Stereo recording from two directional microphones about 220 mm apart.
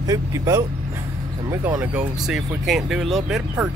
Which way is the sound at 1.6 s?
10° right (ahead or behind).